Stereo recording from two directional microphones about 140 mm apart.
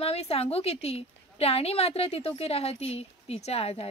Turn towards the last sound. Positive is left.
turn(degrees=45)  # may be behind; listen again after turning